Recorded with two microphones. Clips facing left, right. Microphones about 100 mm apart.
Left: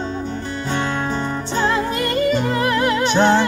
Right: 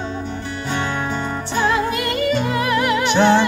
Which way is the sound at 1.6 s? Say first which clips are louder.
Right 1 dB; 30° left (ahead or behind).